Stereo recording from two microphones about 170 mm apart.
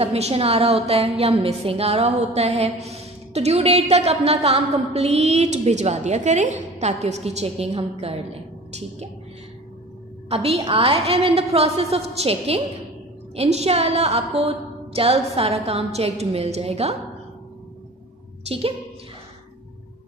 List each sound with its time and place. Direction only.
0.0 s a woman's voice: 35° right (ahead or behind)
10.3 s a woman's voice: 35° right (ahead or behind)
18.4 s a woman's voice: 35° right (ahead or behind)